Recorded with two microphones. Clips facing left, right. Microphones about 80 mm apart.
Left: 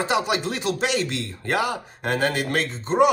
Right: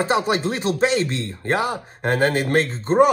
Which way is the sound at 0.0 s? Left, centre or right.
Right.